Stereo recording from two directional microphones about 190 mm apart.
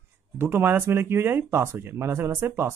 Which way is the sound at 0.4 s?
10° right (ahead or behind).